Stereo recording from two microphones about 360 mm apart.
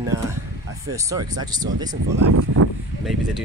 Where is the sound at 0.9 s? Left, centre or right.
Centre.